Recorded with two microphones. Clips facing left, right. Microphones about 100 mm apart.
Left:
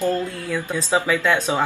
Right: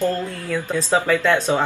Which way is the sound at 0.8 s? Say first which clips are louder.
Right 1 dB; 10° left (ahead or behind).